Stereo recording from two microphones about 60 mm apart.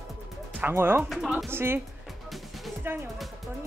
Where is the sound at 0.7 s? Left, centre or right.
Right.